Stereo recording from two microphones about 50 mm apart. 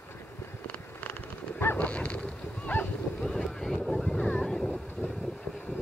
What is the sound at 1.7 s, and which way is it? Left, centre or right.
Goose, left.